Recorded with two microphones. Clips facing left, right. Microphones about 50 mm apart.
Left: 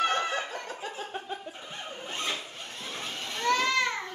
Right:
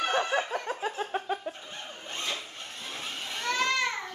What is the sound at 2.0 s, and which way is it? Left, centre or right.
Zipper, centre.